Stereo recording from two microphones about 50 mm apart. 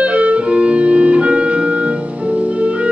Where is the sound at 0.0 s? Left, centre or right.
Right.